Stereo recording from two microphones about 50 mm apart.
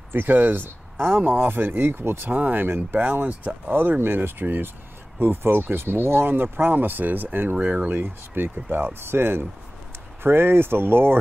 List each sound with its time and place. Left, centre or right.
0.1 s speech: right
3.3 s speech: right
3.7 s speech: right
9.0 s speech: right